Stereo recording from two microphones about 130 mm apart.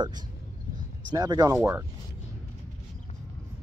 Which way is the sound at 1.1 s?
30° right (ahead or behind).